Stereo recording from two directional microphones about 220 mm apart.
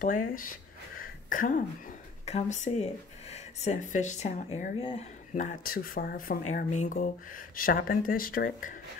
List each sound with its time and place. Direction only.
0.0 s speech: 40° left (ahead or behind)
4.7 s speech: 25° left (ahead or behind)
5.3 s speech: 35° left (ahead or behind)